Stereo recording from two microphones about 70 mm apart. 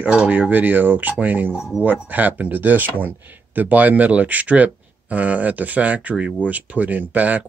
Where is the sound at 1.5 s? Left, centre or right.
Centre.